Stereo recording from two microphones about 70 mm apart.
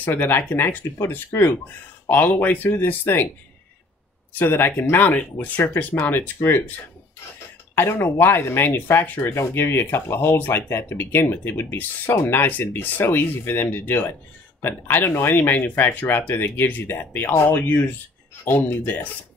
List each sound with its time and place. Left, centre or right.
0.0 s speech: left
4.3 s speech: left
7.7 s speech: left